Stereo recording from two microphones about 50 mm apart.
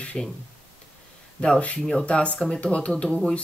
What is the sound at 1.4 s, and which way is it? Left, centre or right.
Speech, left.